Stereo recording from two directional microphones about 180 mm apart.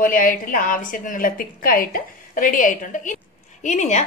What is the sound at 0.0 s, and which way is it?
A woman's voice, 50° left (ahead or behind).